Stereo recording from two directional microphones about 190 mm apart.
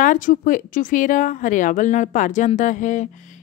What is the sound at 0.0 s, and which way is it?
A woman's voice, 45° left (ahead or behind).